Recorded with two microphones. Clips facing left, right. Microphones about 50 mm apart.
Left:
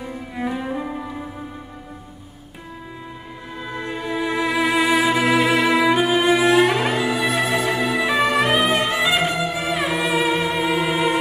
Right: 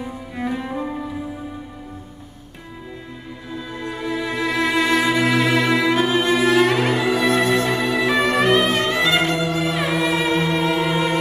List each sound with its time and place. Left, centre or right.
0.4 s cello: centre
3.5 s music: left
3.9 s music: centre